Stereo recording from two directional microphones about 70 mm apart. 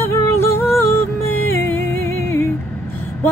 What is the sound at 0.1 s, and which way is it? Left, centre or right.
Music, left.